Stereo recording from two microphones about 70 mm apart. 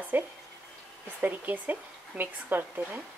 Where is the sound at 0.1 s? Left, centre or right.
Right.